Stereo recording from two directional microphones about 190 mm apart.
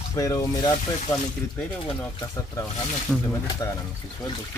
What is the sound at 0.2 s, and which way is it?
Speech, 15° left (ahead or behind).